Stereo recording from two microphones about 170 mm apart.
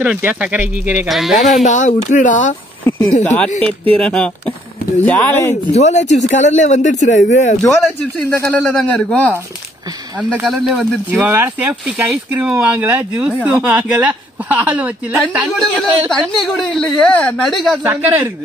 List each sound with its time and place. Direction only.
0.0 s speech: 10° right (ahead or behind)
1.6 s speech: 45° left (ahead or behind)
2.8 s a sound: 10° left (ahead or behind)
3.9 s speech: 5° left (ahead or behind)
5.7 s speech: 40° left (ahead or behind)
7.6 s speech: centre (ahead or behind)
10.4 s speech: centre (ahead or behind)
11.1 s speech: 15° right (ahead or behind)
15.3 s speech: centre (ahead or behind)
17.8 s speech: 10° right (ahead or behind)